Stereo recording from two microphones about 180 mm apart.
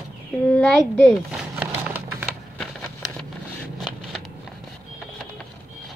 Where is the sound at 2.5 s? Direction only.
5° left (ahead or behind).